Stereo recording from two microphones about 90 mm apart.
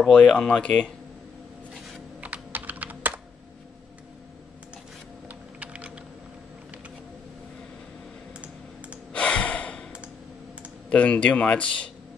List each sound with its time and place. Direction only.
0.1 s speech: 10° left (ahead or behind)
2.2 s computer keyboard: 15° right (ahead or behind)
5.3 s typing: 15° right (ahead or behind)
9.1 s gasp: 10° left (ahead or behind)
10.9 s speech: 15° left (ahead or behind)